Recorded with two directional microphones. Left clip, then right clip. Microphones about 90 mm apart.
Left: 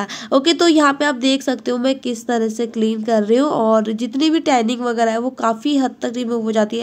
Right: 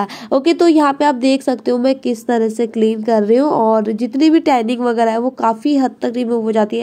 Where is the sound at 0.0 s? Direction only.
45° right (ahead or behind).